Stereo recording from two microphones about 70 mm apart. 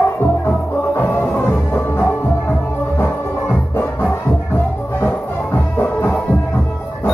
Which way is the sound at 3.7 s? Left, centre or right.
Left.